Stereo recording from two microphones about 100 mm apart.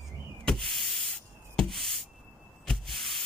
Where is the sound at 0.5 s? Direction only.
Centre (ahead or behind).